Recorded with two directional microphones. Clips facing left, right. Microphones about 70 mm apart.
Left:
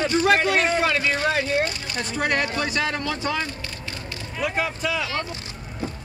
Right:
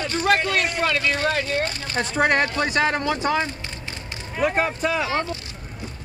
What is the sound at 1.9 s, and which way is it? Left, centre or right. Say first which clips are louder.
Speech: right 5 dB; right.